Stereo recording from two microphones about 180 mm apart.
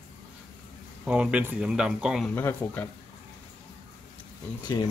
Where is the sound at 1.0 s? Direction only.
5° right (ahead or behind).